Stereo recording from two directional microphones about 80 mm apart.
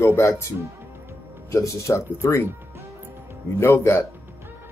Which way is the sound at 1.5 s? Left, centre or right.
Left.